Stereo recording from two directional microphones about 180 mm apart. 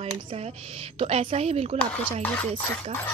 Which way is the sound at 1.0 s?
30° right (ahead or behind).